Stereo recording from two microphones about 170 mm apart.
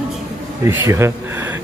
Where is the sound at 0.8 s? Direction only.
15° right (ahead or behind).